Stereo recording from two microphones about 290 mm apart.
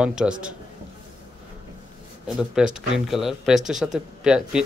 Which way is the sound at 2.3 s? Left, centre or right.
Centre.